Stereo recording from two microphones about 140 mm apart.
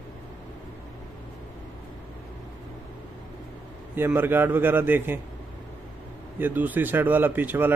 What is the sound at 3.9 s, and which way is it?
Speech, 15° right (ahead or behind).